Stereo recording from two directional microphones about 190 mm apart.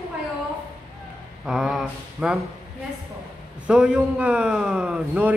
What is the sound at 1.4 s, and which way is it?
Speech, centre (ahead or behind).